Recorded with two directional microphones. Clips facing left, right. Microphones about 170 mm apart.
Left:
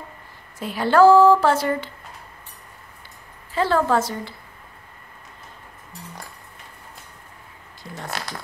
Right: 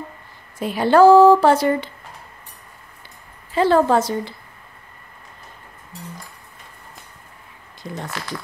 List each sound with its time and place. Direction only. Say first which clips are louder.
0.6 s speech: right 2 dB; 15° right (ahead or behind)
3.5 s a woman's voice: right 4 dB; 20° right (ahead or behind)